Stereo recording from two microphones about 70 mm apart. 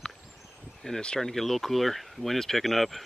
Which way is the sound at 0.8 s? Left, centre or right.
Centre.